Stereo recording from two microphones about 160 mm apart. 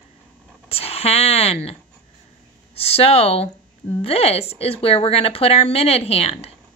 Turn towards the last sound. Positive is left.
turn(degrees=40)  # may be behind; listen again after turning